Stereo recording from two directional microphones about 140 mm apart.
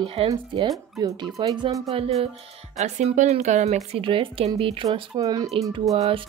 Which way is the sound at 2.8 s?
55° right (ahead or behind).